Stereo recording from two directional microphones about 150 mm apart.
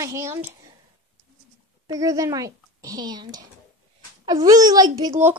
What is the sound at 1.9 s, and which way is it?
A child's voice, 20° right (ahead or behind).